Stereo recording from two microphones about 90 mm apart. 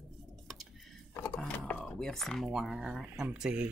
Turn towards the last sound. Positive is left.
turn(degrees=-10)  # may be behind; listen again after turning